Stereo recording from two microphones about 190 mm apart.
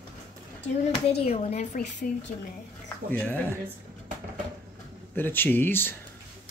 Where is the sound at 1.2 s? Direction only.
35° left (ahead or behind).